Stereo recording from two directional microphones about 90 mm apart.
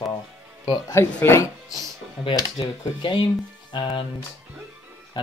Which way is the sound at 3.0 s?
65° left (ahead or behind).